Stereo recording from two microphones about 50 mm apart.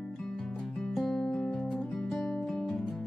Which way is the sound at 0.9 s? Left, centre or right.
Centre.